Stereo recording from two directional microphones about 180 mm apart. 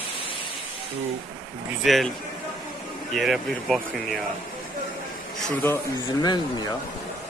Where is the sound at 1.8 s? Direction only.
Centre (ahead or behind).